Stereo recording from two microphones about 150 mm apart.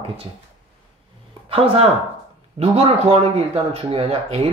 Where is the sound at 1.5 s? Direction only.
40° right (ahead or behind).